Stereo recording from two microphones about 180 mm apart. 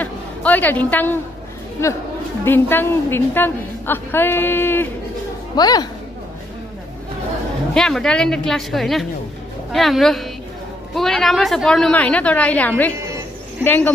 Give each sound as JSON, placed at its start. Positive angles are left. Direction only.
{"t": 0.0, "sound": "a woman's voice", "side_deg": 10}
{"t": 2.4, "sound": "a woman's voice", "side_deg": 10}
{"t": 7.7, "sound": "a woman's voice", "side_deg": 5}